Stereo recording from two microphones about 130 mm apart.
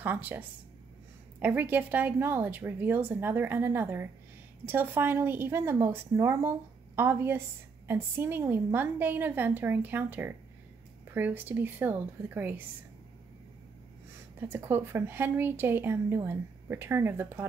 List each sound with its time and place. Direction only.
0.0 s speech: 15° right (ahead or behind)
14.4 s speech: 20° right (ahead or behind)